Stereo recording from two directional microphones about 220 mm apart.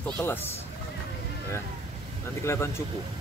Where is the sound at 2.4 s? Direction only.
10° left (ahead or behind).